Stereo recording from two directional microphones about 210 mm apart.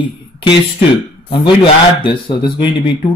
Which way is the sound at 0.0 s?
25° left (ahead or behind).